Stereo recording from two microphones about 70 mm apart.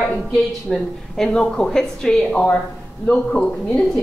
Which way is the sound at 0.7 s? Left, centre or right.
Centre.